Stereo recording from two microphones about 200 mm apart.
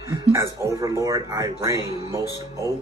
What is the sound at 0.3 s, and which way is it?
Speech, 15° right (ahead or behind).